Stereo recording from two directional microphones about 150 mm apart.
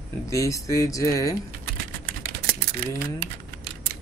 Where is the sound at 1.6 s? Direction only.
80° right.